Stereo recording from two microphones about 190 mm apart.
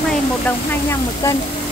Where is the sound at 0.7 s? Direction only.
15° left (ahead or behind).